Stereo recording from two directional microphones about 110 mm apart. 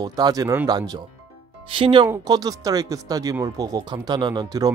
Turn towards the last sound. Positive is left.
turn(degrees=-35)  # may be behind; listen again after turning